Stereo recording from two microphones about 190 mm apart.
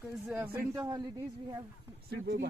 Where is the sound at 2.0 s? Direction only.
65° right (ahead or behind).